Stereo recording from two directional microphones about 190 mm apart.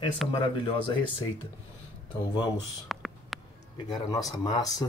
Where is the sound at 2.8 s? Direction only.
Centre (ahead or behind).